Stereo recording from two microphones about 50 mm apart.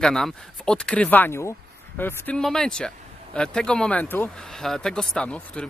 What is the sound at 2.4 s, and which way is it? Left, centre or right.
Speech, centre.